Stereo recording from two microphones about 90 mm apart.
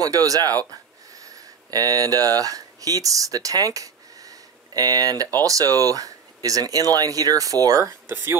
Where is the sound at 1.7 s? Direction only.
45° right (ahead or behind).